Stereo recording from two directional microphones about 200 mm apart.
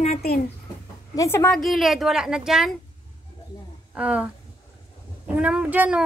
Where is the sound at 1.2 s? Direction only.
15° left (ahead or behind); by 2.7 s centre (ahead or behind).